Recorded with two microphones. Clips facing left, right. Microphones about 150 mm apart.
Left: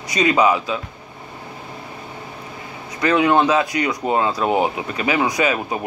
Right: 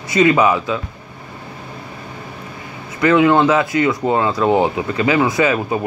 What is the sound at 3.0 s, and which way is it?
Speech, 20° left (ahead or behind).